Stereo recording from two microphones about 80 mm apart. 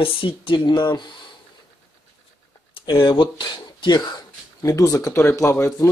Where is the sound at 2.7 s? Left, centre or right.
Left.